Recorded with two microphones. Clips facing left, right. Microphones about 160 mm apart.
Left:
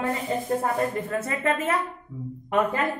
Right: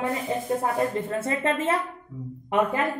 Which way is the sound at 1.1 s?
30° right (ahead or behind).